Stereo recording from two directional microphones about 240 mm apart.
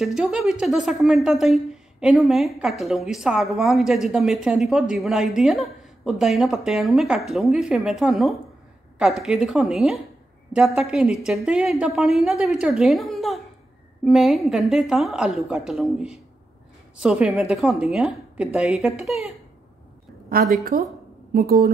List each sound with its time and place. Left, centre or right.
0.0 s a woman's voice: centre
20.7 s a woman's voice: right